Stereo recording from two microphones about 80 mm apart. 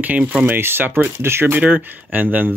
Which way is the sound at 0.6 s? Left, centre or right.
Right.